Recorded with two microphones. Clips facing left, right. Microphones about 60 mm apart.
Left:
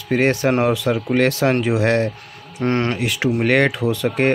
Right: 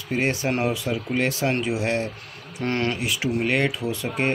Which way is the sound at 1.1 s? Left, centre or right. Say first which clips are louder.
Left 6 dB; left.